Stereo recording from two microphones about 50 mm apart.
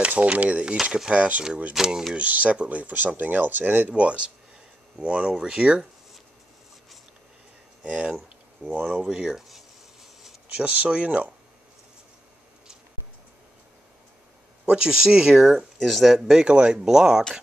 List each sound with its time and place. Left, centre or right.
0.0 s speech: right
1.7 s speech: centre
2.1 s speech: right
3.9 s speech: right
7.8 s speech: right
10.5 s speech: right
14.7 s speech: centre
16.4 s speech: centre